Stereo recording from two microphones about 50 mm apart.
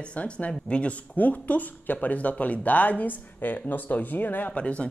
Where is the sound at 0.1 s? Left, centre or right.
Left.